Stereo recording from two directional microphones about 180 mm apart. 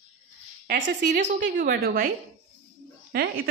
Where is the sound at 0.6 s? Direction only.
45° right (ahead or behind).